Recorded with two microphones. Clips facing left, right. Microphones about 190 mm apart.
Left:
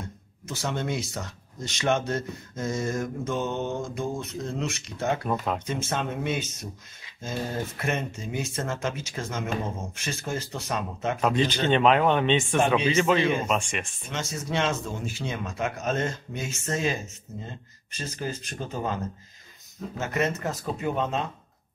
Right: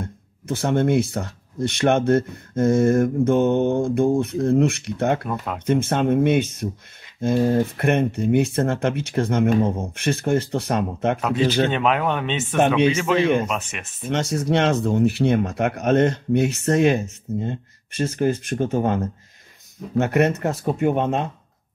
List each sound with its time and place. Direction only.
0.0 s speech: 55° right (ahead or behind)
5.3 s speech: 5° right (ahead or behind)
5.7 s speech: 60° right (ahead or behind)
7.7 s speech: 60° right (ahead or behind)
11.1 s speech: 5° right (ahead or behind)
12.5 s speech: 65° right (ahead or behind)
12.9 s speech: 5° right (ahead or behind)
14.1 s speech: 65° right (ahead or behind)
20.0 s speech: 65° right (ahead or behind)